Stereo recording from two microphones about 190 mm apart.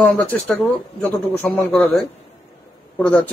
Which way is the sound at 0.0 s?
10° left (ahead or behind).